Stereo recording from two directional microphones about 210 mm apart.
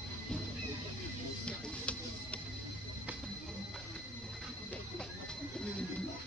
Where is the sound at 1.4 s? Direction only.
5° left (ahead or behind).